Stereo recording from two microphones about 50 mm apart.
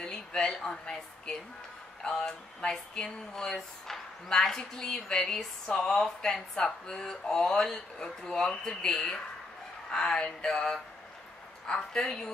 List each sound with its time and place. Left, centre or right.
0.0 s speech: centre